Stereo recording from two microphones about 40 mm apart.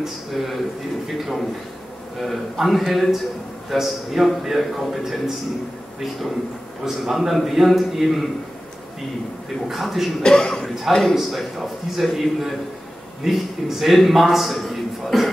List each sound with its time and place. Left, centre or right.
0.0 s a man's voice: centre
6.8 s a man's voice: centre
9.7 s a man's voice: centre
10.2 s a man's voice: centre